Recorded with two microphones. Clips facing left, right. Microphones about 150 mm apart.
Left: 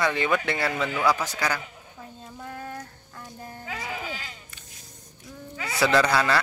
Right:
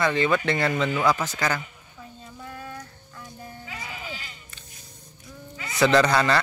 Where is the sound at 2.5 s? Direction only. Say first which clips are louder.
Left 2 dB; 40° left (ahead or behind).